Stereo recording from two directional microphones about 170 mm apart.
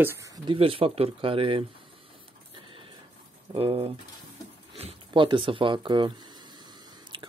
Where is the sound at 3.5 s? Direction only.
30° right (ahead or behind).